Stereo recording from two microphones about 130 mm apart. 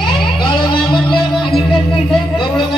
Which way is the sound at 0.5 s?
35° left (ahead or behind).